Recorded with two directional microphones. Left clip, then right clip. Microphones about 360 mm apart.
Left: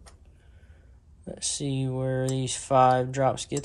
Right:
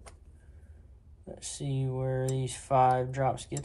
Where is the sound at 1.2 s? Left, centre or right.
Centre.